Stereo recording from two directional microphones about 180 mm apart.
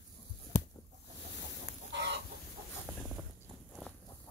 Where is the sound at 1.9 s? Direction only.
70° right (ahead or behind).